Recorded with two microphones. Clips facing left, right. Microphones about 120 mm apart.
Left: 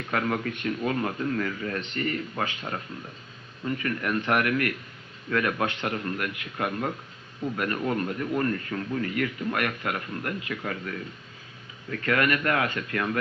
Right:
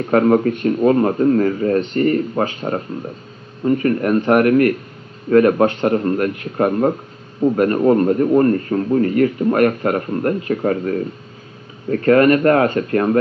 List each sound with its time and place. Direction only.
0.0 s speech: 40° right (ahead or behind)